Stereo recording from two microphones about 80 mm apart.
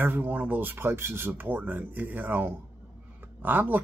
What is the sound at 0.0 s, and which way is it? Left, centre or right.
Speech, right.